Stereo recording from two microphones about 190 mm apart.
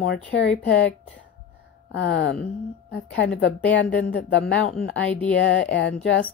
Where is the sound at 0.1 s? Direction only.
65° left (ahead or behind).